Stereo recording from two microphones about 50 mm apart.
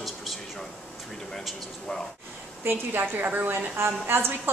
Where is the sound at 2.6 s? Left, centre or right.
Right.